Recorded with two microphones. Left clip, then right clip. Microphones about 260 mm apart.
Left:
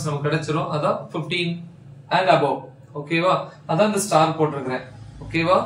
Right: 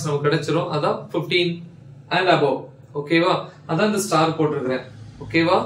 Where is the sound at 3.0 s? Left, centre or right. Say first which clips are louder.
Right 1 dB; centre.